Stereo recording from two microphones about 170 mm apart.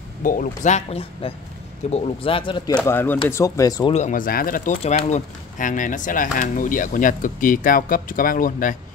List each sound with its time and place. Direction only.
0.2 s speech: 50° left (ahead or behind); by 2.8 s 25° left (ahead or behind)
2.9 s speech: 15° left (ahead or behind)
3.9 s speech: 45° left (ahead or behind)